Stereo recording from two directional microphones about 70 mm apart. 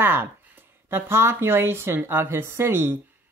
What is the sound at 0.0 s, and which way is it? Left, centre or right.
Speech, right.